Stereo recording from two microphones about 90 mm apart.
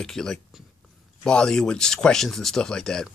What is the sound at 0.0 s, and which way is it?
Speech, 5° left (ahead or behind).